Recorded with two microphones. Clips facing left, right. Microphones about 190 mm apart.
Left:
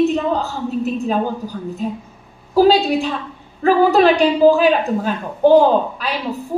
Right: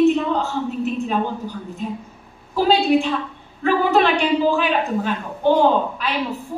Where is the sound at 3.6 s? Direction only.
40° left (ahead or behind).